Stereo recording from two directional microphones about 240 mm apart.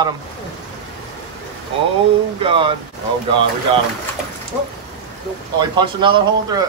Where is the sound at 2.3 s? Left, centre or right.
Right.